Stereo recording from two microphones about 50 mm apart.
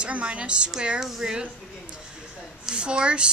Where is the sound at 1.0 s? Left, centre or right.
Centre.